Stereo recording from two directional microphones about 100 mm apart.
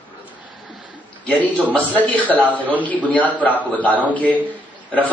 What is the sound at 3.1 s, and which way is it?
A man's voice, 15° left (ahead or behind).